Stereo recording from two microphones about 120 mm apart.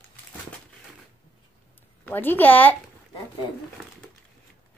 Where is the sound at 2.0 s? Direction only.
15° left (ahead or behind).